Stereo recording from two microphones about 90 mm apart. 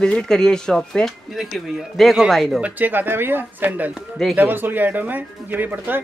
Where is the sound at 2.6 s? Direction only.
20° right (ahead or behind).